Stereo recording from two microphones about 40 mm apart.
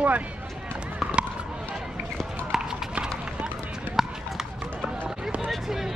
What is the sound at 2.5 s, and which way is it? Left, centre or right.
Run, centre.